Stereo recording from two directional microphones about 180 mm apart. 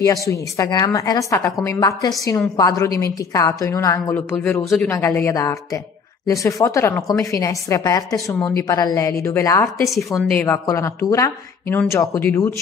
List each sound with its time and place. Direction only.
0.0 s a woman's voice: 15° left (ahead or behind)
9.8 s a woman's voice: centre (ahead or behind)
10.4 s a woman's voice: 15° left (ahead or behind)